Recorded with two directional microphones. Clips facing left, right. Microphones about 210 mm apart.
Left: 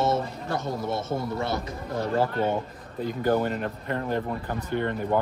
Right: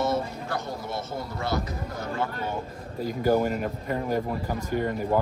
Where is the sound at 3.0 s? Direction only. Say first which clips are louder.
Right 1 dB; 10° right (ahead or behind).